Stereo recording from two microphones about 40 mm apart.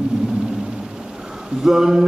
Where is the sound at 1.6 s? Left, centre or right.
Centre.